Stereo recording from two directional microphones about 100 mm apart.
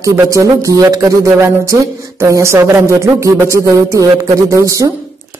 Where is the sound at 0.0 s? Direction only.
30° right (ahead or behind).